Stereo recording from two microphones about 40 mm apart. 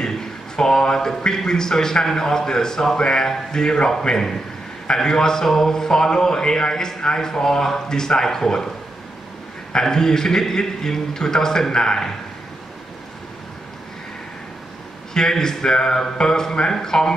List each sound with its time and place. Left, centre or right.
0.6 s a man's voice: centre
9.7 s a man's voice: centre
15.1 s a man's voice: centre